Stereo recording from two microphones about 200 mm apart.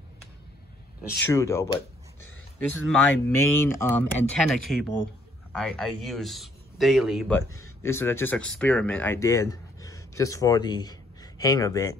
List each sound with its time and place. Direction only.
1.3 s speech: 15° left (ahead or behind)
2.7 s speech: 10° left (ahead or behind)
7.8 s speech: 10° left (ahead or behind)